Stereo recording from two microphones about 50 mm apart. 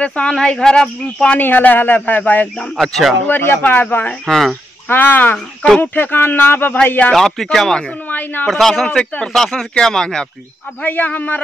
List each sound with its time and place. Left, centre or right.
0.0 s speech: left
1.4 s a man's voice: left
2.8 s speech: centre
3.3 s speech: left
3.6 s speech: left
4.3 s speech: centre
4.8 s a man's voice: left
7.1 s speech: centre
8.1 s a man's voice: left
8.5 s speech: centre
8.7 s speech: centre
10.8 s a man's voice: left